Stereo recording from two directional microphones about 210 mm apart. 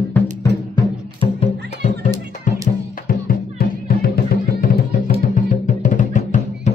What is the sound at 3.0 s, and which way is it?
Music, 40° left (ahead or behind).